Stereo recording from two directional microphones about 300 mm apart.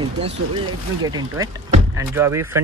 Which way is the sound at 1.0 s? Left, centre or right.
Centre.